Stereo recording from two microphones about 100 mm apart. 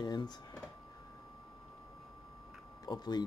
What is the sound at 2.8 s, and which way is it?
Speech, 45° left (ahead or behind).